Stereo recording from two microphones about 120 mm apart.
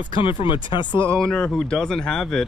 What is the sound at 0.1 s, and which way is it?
Speech, 45° left (ahead or behind).